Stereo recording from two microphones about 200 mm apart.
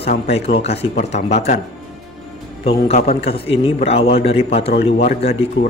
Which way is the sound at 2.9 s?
35° left (ahead or behind).